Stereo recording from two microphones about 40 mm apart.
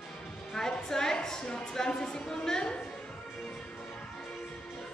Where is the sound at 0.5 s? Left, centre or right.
Centre.